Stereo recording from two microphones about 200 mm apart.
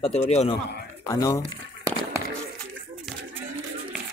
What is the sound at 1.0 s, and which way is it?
Speech, 15° left (ahead or behind).